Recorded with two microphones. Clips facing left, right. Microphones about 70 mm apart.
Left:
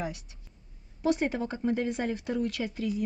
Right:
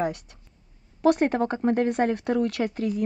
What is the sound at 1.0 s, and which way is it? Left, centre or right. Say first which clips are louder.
Speech: right 7 dB; right.